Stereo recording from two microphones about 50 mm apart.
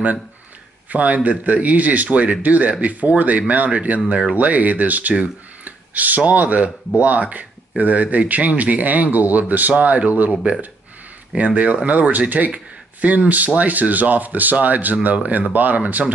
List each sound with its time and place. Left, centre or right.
0.8 s speech: right
11.3 s speech: right